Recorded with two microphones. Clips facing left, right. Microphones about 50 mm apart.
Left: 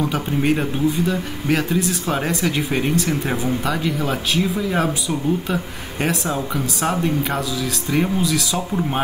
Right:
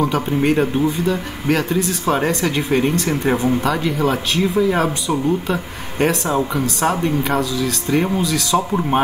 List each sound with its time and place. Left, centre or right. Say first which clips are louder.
0.1 s speech: right 3 dB; centre